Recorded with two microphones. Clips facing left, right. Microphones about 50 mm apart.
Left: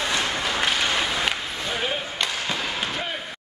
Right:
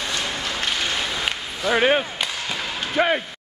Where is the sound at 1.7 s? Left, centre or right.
Right.